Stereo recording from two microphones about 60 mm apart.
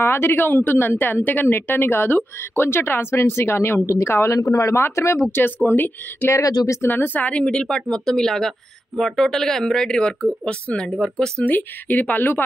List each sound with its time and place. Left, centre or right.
0.0 s a woman's voice: left
4.3 s speech: left
5.2 s a woman's voice: left
6.3 s speech: left
6.8 s a woman's voice: left
7.2 s speech: centre
11.4 s speech: left